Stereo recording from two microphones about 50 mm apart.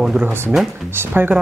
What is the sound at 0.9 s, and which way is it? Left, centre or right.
Speech, right.